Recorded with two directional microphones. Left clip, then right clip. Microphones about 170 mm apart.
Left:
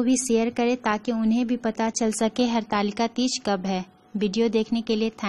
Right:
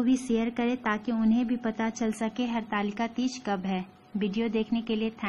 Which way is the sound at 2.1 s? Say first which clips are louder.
Left 8 dB; 50° left (ahead or behind).